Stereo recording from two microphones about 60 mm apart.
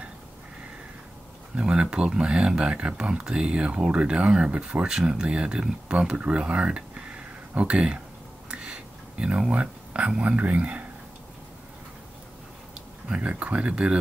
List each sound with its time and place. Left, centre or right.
1.6 s speech: centre
8.5 s a sound: centre
9.5 s speech: centre
13.2 s speech: right